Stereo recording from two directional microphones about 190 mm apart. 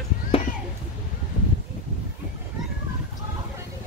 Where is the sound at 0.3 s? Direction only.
30° left (ahead or behind).